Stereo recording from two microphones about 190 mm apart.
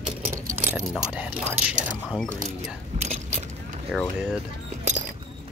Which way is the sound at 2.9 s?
35° right (ahead or behind).